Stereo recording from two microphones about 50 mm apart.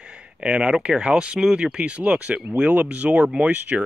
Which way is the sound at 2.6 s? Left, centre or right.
Right.